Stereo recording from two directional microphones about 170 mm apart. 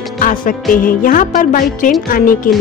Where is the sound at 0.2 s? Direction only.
55° left (ahead or behind).